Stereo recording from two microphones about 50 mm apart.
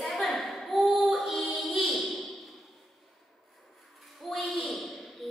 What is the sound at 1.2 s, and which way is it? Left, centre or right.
Music, centre.